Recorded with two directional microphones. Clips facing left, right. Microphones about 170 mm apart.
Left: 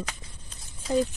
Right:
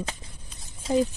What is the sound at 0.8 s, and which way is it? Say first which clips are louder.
Speech: right 1 dB; 25° right (ahead or behind).